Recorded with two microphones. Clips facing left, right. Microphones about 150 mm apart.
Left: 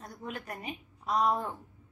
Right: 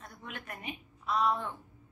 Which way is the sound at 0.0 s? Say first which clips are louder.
Left 5 dB; 35° left (ahead or behind).